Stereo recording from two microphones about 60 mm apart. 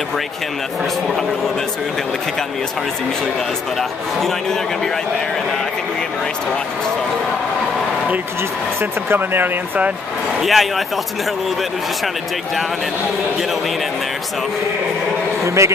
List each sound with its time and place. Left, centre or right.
9.1 s speech: right
10.4 s speech: centre
15.4 s a man's voice: right